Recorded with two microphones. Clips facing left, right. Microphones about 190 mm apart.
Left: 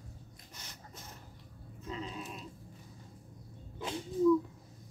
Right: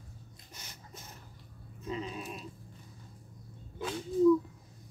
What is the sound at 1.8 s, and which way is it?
Goat, 10° right (ahead or behind).